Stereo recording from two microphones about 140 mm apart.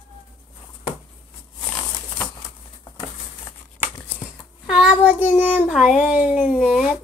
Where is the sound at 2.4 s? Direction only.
25° left (ahead or behind).